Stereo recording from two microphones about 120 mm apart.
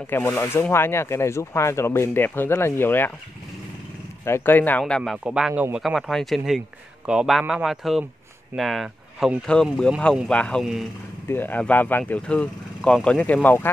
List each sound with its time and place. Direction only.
0.1 s speech: 20° left (ahead or behind)
4.2 s speech: 20° left (ahead or behind)
5.2 s speech: 10° right (ahead or behind); by 13.7 s 15° left (ahead or behind)